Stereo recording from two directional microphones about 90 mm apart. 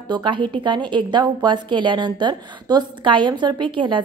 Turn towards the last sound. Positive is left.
turn(degrees=-65)  # may be behind; listen again after turning